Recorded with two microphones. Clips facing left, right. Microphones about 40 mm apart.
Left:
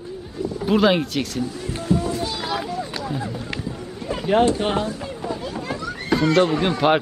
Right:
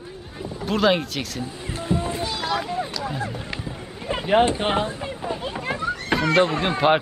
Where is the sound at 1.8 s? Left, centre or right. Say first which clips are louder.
Left 3 dB; right.